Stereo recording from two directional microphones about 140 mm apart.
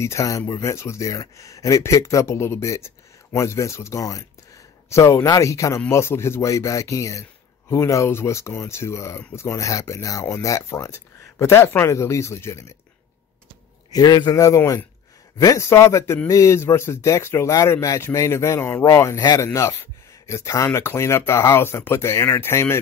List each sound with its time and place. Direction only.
0.0 s speech: 20° left (ahead or behind)
13.9 s speech: 30° left (ahead or behind)